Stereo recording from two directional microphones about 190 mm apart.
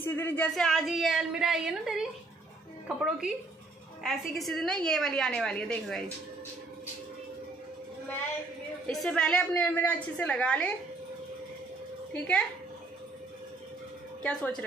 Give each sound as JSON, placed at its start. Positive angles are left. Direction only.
{"t": 0.0, "sound": "a woman's voice", "side_deg": 10}
{"t": 8.8, "sound": "a woman's voice", "side_deg": 5}
{"t": 12.1, "sound": "speech", "side_deg": 5}
{"t": 14.2, "sound": "a woman's voice", "side_deg": 5}